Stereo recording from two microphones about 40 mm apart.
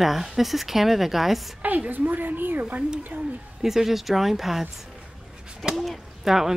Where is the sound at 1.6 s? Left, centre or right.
Right.